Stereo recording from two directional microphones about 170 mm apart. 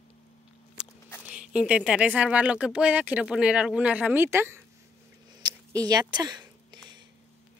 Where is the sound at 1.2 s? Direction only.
5° right (ahead or behind).